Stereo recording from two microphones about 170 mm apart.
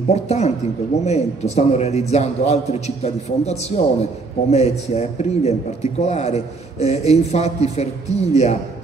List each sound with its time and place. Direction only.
0.1 s a man's voice: 40° left (ahead or behind)